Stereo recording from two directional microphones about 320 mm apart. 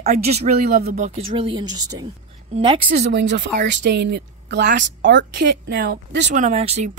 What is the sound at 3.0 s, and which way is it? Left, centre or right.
Speech, right.